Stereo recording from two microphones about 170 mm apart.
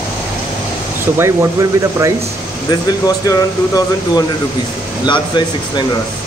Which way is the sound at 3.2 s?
20° left (ahead or behind).